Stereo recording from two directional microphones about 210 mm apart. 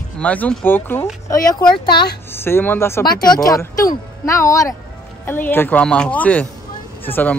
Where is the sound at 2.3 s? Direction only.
10° left (ahead or behind).